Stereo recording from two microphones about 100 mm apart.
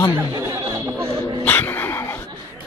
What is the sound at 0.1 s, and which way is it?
Chatter, 30° right (ahead or behind).